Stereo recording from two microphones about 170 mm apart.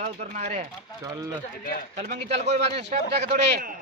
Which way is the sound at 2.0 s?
50° right (ahead or behind).